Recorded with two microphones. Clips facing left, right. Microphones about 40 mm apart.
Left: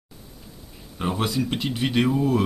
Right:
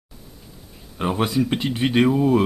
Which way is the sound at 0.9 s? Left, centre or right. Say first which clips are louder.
Right 4 dB; centre.